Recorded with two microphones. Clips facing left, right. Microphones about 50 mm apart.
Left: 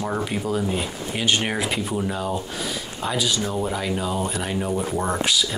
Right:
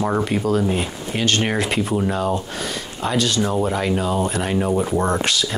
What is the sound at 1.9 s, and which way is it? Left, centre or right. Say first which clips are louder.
Speech: right 5 dB; centre.